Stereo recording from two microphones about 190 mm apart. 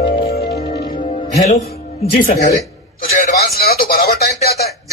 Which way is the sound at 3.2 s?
50° left (ahead or behind).